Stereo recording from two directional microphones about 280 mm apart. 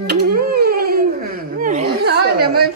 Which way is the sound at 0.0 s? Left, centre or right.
Right.